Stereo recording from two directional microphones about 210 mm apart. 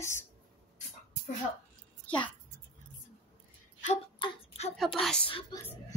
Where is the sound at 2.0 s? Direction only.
5° left (ahead or behind).